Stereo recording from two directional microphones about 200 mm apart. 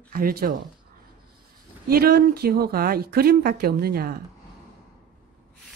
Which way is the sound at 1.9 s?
50° right (ahead or behind).